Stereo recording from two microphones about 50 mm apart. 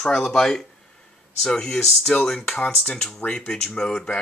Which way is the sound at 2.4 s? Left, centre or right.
Left.